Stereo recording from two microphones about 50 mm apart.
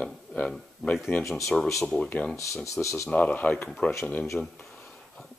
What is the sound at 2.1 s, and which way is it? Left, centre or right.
Speech, left.